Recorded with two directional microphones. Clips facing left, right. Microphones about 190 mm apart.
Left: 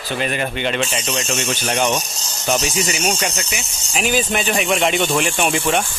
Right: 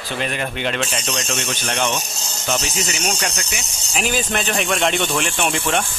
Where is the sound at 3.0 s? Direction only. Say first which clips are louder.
Left 3 dB; 10° left (ahead or behind).